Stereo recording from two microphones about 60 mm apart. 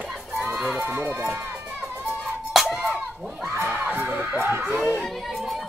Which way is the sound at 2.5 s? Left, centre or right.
Centre.